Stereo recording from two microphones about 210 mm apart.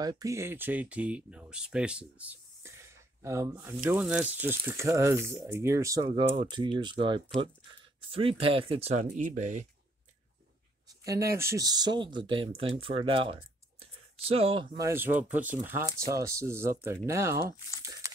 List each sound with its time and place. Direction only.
0.0 s speech: 15° right (ahead or behind); by 9.7 s 35° right (ahead or behind)
11.1 s speech: 15° right (ahead or behind)
18.0 s a sound: 15° right (ahead or behind)